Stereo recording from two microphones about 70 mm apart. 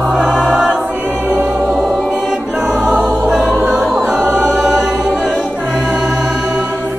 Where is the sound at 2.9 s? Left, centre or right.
Right.